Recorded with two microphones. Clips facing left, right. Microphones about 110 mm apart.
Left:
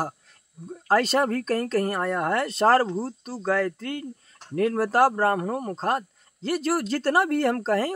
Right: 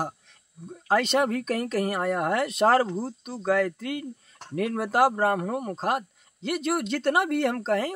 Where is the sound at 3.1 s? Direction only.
Centre (ahead or behind).